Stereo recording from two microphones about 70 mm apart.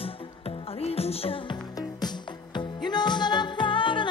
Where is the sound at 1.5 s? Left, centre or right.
Left.